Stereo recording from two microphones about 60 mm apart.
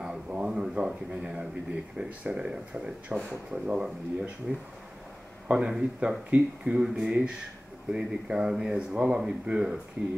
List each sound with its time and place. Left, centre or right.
0.0 s speech: centre
5.5 s speech: centre